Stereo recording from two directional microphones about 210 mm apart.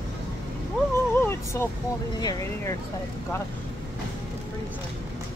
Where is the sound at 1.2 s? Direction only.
10° left (ahead or behind).